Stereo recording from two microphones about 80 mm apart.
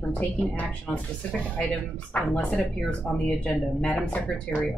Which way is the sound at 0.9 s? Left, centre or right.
Centre.